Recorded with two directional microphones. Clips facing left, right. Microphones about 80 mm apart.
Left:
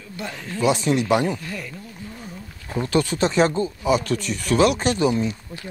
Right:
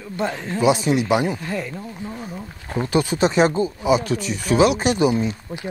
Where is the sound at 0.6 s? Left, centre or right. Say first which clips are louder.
Right 2 dB; centre.